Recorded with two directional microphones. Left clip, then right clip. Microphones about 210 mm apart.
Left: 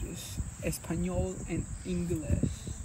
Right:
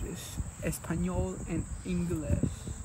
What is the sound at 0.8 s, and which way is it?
Speech, 15° right (ahead or behind).